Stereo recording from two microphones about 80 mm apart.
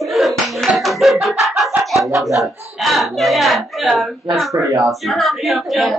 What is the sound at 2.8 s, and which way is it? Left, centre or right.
A woman's voice, centre.